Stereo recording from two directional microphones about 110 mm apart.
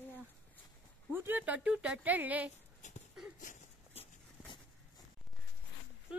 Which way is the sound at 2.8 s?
90° left.